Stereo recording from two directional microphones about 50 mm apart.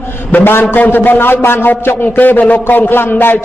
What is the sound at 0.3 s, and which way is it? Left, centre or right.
A man's voice, left.